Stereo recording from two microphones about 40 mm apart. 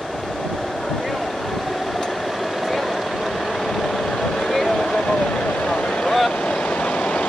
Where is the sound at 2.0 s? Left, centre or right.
Centre.